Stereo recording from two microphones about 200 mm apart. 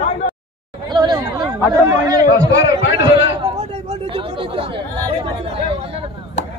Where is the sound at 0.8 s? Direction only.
20° right (ahead or behind).